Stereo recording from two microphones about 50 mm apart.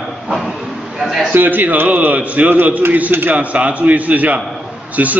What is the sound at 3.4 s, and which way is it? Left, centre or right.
A man's voice, right.